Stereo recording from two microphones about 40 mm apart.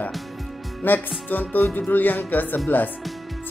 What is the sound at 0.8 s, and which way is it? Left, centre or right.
Speech, left.